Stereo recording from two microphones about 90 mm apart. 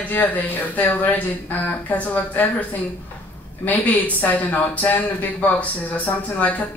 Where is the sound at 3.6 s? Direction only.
15° left (ahead or behind).